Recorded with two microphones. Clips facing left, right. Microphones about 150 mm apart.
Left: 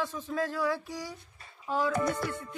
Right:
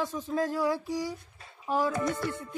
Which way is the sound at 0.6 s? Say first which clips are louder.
Right 3 dB; 20° right (ahead or behind).